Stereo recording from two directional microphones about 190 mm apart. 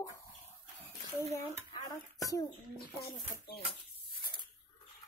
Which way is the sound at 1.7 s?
20° left (ahead or behind).